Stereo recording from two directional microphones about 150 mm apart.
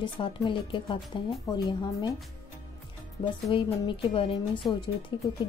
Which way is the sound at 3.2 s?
35° left (ahead or behind).